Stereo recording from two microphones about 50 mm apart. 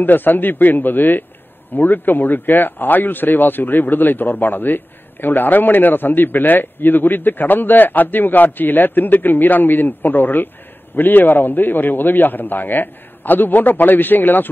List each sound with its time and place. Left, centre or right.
0.0 s speech: left